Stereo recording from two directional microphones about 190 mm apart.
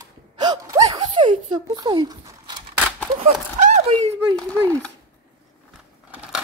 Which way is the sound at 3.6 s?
35° right (ahead or behind).